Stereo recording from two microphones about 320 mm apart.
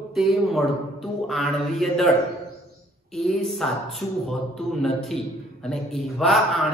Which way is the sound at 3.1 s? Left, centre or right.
Centre.